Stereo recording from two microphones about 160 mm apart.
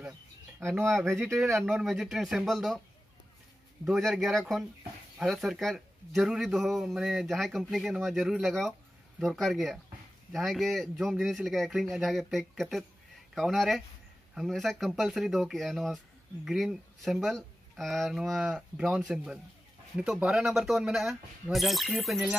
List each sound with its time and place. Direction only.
0.6 s speech: 15° right (ahead or behind)
1.6 s speech: centre (ahead or behind)
3.8 s speech: 5° right (ahead or behind)